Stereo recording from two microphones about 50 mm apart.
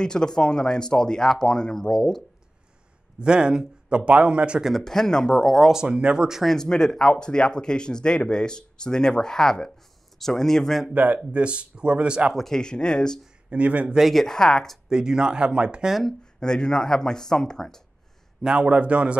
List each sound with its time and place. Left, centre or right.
0.0 s speech: centre
3.2 s a man's voice: centre
4.8 s speech: centre
5.7 s speech: centre
6.4 s speech: centre
10.9 s a man's voice: right
12.4 s speech: centre
13.5 s a man's voice: right
13.9 s speech: centre
14.2 s speech: centre
14.9 s speech: centre
15.9 s speech: centre
16.3 s speech: centre
18.4 s a man's voice: right